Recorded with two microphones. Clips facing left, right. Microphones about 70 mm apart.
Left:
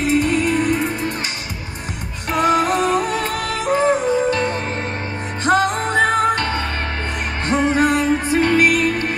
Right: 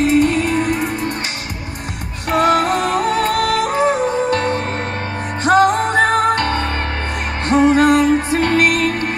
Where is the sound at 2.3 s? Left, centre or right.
Right.